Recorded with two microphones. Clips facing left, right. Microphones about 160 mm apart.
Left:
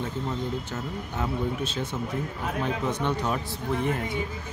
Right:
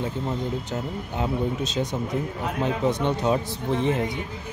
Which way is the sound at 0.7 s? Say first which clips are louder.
Right 3 dB; 15° right (ahead or behind).